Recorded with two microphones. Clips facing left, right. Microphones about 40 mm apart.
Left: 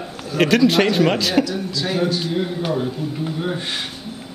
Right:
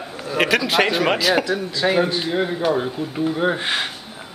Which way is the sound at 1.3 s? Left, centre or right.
Right.